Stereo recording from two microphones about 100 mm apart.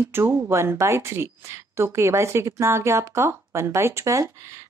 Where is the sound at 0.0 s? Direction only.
25° right (ahead or behind).